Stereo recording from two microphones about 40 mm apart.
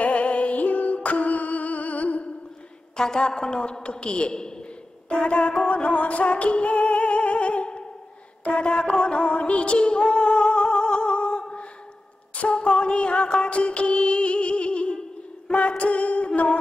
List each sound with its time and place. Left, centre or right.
0.0 s music: left
3.0 s a woman's voice: centre
5.1 s music: left
15.5 s a sound: left
15.8 s singing: left